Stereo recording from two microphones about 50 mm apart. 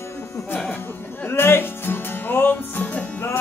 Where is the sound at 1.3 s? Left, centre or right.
Left.